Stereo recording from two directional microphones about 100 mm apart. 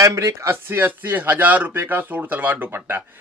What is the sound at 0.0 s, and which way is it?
A man's voice, 35° right (ahead or behind).